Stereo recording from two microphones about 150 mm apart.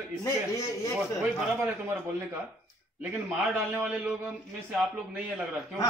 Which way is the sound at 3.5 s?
10° right (ahead or behind).